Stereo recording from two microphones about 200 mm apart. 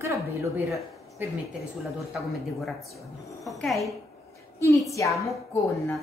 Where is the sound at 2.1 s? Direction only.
Centre (ahead or behind).